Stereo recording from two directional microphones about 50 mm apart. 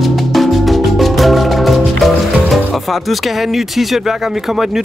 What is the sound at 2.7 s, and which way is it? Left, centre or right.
Speech, centre.